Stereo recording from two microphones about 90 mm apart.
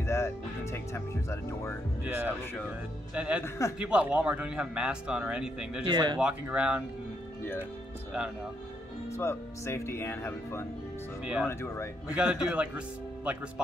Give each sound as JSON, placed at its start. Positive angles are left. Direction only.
{"t": 0.0, "sound": "speech", "side_deg": 30}
{"t": 2.0, "sound": "a man's voice", "side_deg": -20}
{"t": 3.4, "sound": "a man's voice", "side_deg": 35}
{"t": 3.8, "sound": "a man's voice", "side_deg": -15}
{"t": 5.9, "sound": "speech", "side_deg": -50}
{"t": 6.5, "sound": "a man's voice", "side_deg": -10}
{"t": 9.1, "sound": "speech", "side_deg": 30}
{"t": 12.1, "sound": "a man's voice", "side_deg": -15}